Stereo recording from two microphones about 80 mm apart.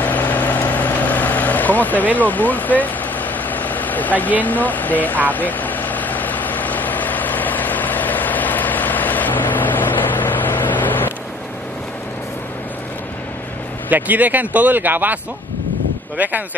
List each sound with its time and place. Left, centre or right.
0.0 s vehicle: left
4.4 s speech: left
5.3 s vehicle: left
13.8 s speech: right
16.2 s speech: right